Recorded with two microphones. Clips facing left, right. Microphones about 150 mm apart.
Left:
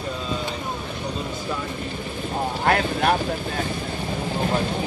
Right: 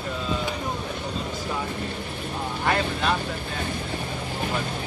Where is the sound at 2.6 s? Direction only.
55° left (ahead or behind).